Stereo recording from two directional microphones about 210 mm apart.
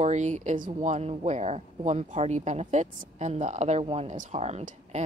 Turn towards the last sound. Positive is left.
turn(degrees=-30)  # may be behind; listen again after turning